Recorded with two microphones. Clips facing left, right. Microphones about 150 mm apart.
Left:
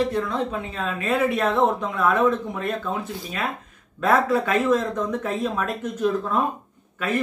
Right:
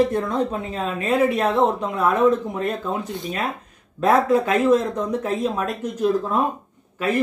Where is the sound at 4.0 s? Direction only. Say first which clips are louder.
Right 3 dB; 35° right (ahead or behind).